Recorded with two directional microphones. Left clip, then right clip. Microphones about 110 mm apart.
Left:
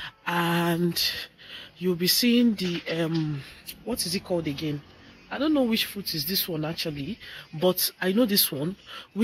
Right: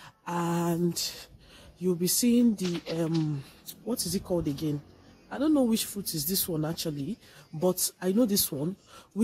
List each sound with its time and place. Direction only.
0.0 s a sound: 15° right (ahead or behind)
2.7 s speech: 25° right (ahead or behind)
3.3 s speech: 35° right (ahead or behind)
7.5 s speech: 25° right (ahead or behind)